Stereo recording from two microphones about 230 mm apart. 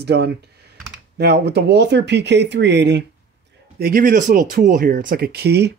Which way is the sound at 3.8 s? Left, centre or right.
Right.